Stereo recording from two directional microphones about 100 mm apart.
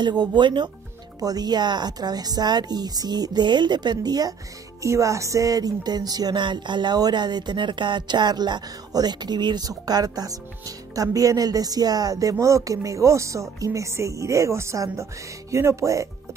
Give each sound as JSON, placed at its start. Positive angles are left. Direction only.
{"t": 0.0, "sound": "music", "side_deg": -45}
{"t": 4.8, "sound": "music", "side_deg": -30}
{"t": 11.0, "sound": "speech", "side_deg": -35}